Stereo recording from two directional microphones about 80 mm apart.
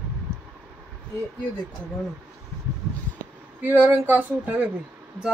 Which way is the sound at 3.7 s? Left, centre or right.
Right.